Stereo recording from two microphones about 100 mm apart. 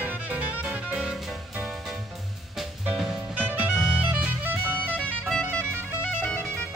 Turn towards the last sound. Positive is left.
turn(degrees=20)  # may be behind; listen again after turning